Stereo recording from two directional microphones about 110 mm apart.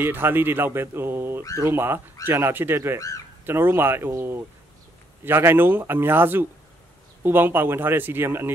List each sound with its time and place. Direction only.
0.0 s speech: 20° right (ahead or behind)